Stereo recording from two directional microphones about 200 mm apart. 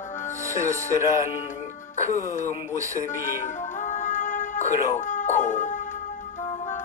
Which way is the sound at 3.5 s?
40° left (ahead or behind).